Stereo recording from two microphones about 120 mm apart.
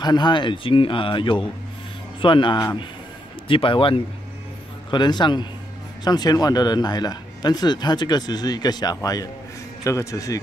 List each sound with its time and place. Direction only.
0.0 s a man's voice: 40° left (ahead or behind)